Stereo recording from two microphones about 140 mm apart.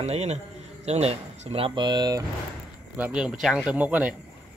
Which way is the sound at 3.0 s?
10° right (ahead or behind).